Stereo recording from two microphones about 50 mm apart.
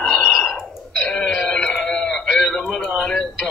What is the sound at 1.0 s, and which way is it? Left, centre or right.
Music, centre.